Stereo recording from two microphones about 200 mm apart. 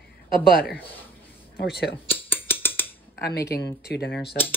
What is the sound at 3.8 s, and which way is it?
Speech, 55° left (ahead or behind).